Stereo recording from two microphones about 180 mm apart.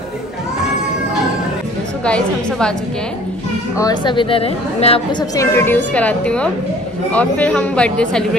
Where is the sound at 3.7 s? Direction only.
20° left (ahead or behind).